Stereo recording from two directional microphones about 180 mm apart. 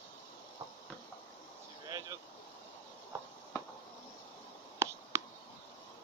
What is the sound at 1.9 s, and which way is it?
Vehicle, 20° right (ahead or behind).